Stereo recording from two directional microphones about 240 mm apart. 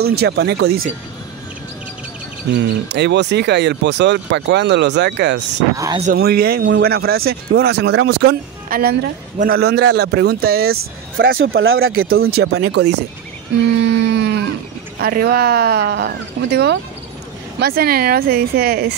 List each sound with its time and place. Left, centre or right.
0.0 s speech: right
2.9 s speech: right
5.8 s speech: centre
6.0 s speech: right
11.3 s speech: right
11.9 s speech: right
13.7 s a sound: right
15.0 s speech: right